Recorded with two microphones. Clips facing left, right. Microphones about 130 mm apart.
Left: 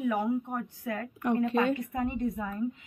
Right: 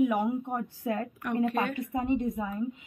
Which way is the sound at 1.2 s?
25° left (ahead or behind).